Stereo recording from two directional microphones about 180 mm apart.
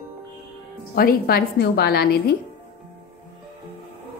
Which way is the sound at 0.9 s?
55° left (ahead or behind).